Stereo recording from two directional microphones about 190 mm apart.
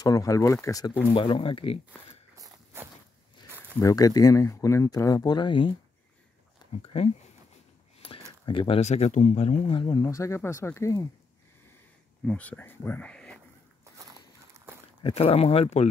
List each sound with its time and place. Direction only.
0.0 s speech: 20° left (ahead or behind)
2.3 s walk: 15° right (ahead or behind)
3.8 s speech: 20° left (ahead or behind)
6.8 s speech: 30° left (ahead or behind)
8.5 s speech: 25° left (ahead or behind)
12.3 s speech: 5° left (ahead or behind)
15.0 s speech: 30° left (ahead or behind)